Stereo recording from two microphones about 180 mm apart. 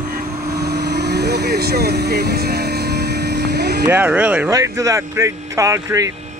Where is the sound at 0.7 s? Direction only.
65° right (ahead or behind).